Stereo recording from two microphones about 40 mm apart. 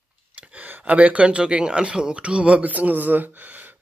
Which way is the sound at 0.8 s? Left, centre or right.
Right.